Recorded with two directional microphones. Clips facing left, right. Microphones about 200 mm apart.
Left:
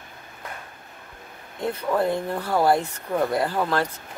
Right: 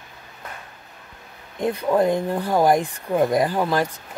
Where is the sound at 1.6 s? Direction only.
15° right (ahead or behind).